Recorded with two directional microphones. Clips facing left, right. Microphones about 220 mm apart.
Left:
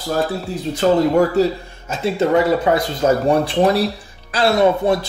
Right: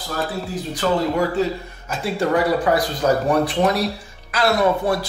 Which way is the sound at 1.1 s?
40° left (ahead or behind).